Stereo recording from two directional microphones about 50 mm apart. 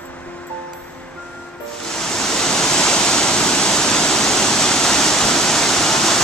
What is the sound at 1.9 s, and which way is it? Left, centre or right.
Waterfall, centre.